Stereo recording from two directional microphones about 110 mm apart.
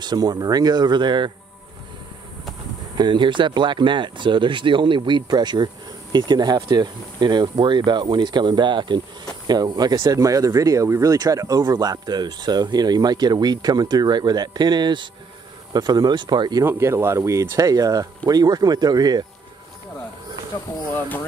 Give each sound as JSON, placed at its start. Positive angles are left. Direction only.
{"t": 0.0, "sound": "speech", "side_deg": -40}
{"t": 3.0, "sound": "speech", "side_deg": -45}
{"t": 16.6, "sound": "speech", "side_deg": -25}
{"t": 20.7, "sound": "speech", "side_deg": 30}